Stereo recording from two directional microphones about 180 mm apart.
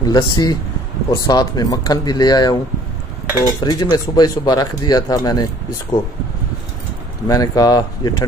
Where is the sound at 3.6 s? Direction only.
20° left (ahead or behind).